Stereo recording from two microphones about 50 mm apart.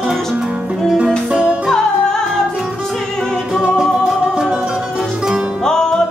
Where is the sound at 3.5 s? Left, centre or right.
Centre.